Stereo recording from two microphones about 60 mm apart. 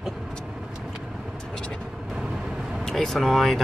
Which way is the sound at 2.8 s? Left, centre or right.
Centre.